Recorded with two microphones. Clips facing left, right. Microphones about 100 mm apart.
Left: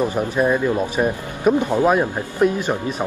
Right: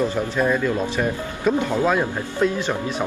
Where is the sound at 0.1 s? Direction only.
15° left (ahead or behind).